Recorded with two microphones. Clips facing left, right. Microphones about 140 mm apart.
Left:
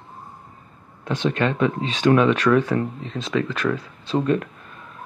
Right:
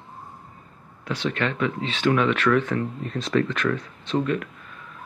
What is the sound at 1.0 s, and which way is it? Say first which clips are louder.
Speech: left 4 dB; 20° left (ahead or behind).